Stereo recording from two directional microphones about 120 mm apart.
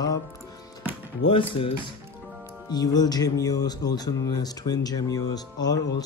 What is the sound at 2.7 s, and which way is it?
Speech, 35° left (ahead or behind).